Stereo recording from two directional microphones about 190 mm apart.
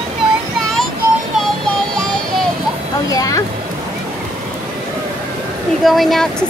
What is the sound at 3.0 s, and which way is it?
Speech, 20° left (ahead or behind).